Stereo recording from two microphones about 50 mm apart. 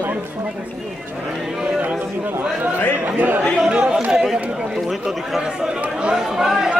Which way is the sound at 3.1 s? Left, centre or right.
Right.